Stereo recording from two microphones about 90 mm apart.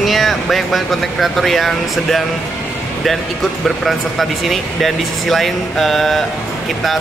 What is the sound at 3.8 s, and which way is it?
Speech, centre (ahead or behind).